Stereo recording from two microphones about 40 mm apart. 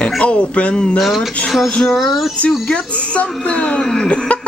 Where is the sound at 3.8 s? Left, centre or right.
Centre.